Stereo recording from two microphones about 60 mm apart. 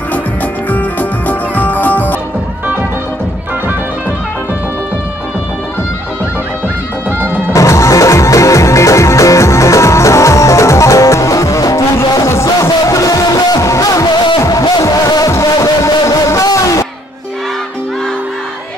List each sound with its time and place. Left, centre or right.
0.7 s music: left
7.1 s music: right
7.5 s music: left
13.6 s music: left
14.5 s music: left
15.6 s a sound: left